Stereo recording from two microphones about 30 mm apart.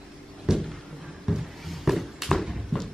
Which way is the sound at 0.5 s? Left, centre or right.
Centre.